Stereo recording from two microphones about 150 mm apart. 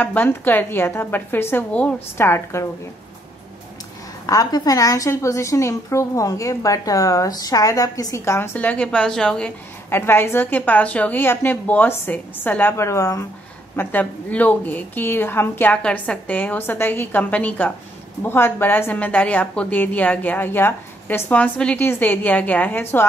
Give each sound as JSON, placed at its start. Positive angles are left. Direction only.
{"t": 0.0, "sound": "a woman's voice", "side_deg": 10}
{"t": 4.3, "sound": "a woman's voice", "side_deg": 25}
{"t": 9.8, "sound": "a woman's voice", "side_deg": 15}